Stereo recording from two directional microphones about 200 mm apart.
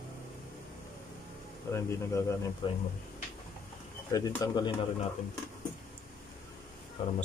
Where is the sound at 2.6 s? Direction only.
25° left (ahead or behind).